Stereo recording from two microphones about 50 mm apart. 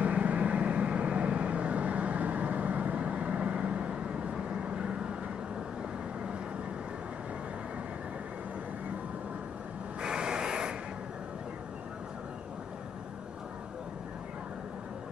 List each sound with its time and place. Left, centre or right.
0.0 s vehicle: right
10.0 s rub: centre